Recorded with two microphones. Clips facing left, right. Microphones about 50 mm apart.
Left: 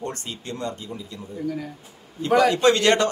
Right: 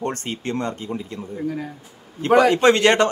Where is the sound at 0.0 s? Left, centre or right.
Right.